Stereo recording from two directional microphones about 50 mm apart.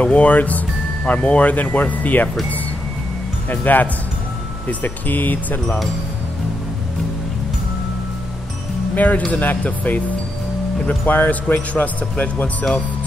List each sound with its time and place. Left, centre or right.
0.0 s speech: left
3.4 s speech: left
8.9 s speech: left
11.1 s speech: left